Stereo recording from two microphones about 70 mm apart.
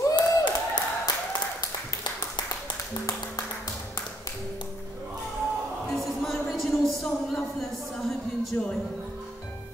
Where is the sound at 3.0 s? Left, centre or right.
Left.